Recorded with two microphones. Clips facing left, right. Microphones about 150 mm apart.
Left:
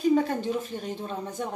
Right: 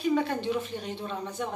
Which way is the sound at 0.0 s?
40° left (ahead or behind).